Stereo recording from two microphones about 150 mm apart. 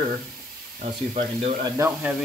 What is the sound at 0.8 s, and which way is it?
Speech, 40° right (ahead or behind).